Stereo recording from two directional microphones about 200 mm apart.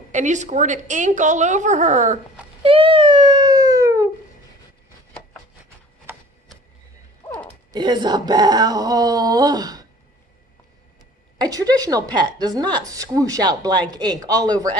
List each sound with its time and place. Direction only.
0.1 s speech: 35° right (ahead or behind)
2.6 s a sound: 25° right (ahead or behind)
7.7 s a woman's voice: 20° right (ahead or behind)
11.3 s a woman's voice: 20° right (ahead or behind)